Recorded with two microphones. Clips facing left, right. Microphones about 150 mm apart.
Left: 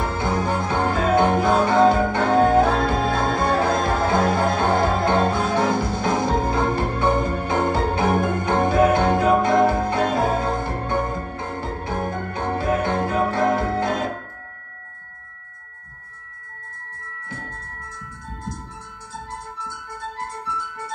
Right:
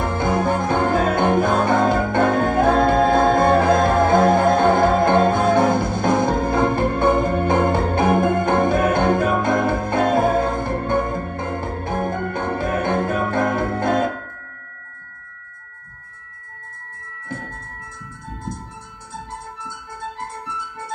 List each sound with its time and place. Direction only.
0.0 s music: 50° right (ahead or behind)